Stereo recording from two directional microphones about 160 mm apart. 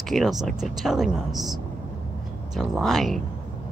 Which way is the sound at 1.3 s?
25° right (ahead or behind).